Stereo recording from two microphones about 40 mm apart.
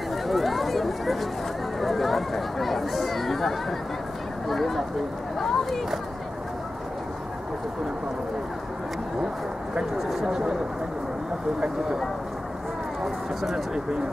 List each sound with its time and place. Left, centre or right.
0.3 s chatter: centre
1.8 s speech: centre
10.2 s speech: centre
13.0 s speech: centre